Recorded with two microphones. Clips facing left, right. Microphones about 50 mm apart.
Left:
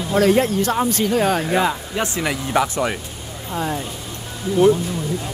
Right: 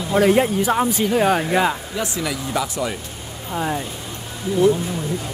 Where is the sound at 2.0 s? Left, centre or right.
Left.